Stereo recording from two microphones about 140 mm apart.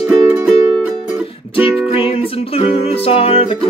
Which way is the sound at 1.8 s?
40° left (ahead or behind).